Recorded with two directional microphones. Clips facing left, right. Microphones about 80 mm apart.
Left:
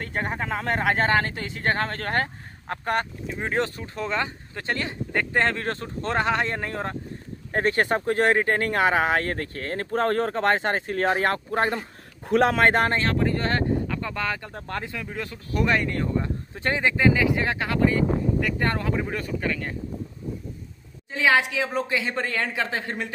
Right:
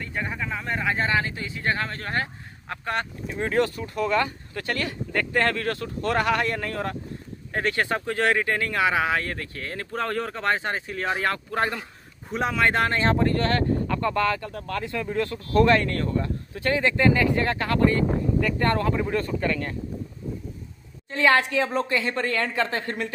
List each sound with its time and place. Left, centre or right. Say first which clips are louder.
0.0 s a sound: left 2 dB; left
0.4 s speech: left 3 dB; left
3.3 s speech: right 3 dB; left
12.3 s a man's voice: left 7 dB; left
12.5 s speech: left 2 dB; left
13.4 s speech: right 2 dB; left
13.8 s speech: right 5 dB; centre
15.0 s speech: right 6 dB; centre
21.1 s speech: right 1 dB; centre